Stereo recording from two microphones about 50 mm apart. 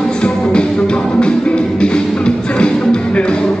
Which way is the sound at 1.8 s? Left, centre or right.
Centre.